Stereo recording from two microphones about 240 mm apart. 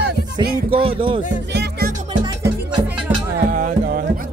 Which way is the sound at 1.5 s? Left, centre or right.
Right.